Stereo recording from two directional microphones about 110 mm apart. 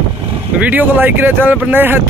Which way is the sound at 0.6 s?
15° right (ahead or behind).